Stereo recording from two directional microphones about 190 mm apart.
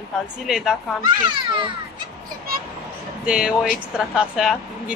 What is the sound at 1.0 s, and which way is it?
Speech, 25° right (ahead or behind).